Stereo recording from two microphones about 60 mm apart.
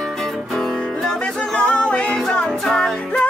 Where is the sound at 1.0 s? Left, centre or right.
Centre.